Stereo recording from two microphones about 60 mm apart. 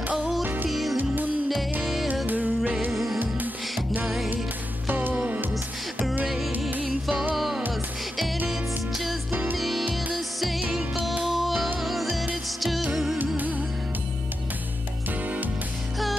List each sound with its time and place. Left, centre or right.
0.4 s music: right
0.7 s music: centre
0.9 s music: right
2.9 s music: centre
4.8 s music: right
6.2 s music: centre
9.3 s music: right
9.6 s music: centre
11.8 s music: centre